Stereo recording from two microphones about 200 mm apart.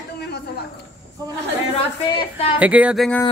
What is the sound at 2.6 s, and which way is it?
Speech, 5° right (ahead or behind).